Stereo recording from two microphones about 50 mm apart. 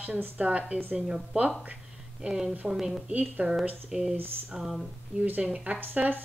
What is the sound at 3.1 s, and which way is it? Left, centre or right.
Speech, right.